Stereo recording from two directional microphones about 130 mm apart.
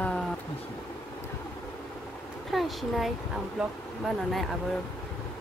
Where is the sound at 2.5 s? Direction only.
Centre (ahead or behind).